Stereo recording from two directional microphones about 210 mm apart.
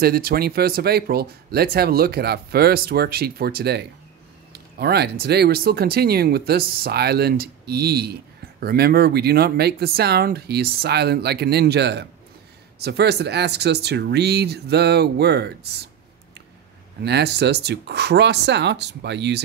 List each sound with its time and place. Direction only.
0.0 s speech: 45° right (ahead or behind)
17.0 s speech: 50° right (ahead or behind)